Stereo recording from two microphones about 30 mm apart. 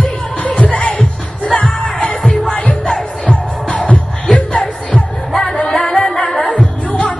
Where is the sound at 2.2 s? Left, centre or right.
Centre.